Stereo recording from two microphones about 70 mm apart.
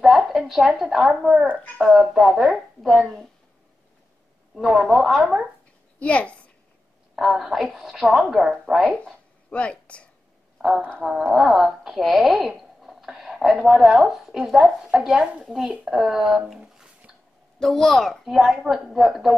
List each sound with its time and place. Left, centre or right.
0.0 s a woman's voice: centre
4.6 s a woman's voice: centre
5.9 s a child's voice: centre
7.2 s a woman's voice: centre
9.0 s a sound: centre
11.0 s a woman's voice: centre
17.6 s a woman's voice: centre